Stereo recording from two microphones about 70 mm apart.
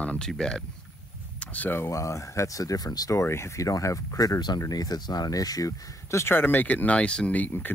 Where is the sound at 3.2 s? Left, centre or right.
Left.